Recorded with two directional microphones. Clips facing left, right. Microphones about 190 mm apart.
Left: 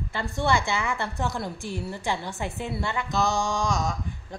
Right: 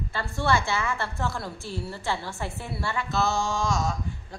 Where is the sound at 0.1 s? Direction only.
20° left (ahead or behind).